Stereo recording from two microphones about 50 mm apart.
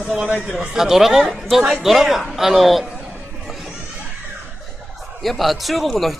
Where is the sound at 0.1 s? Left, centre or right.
Centre.